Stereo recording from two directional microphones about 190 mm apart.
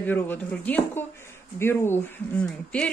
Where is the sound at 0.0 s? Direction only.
10° left (ahead or behind).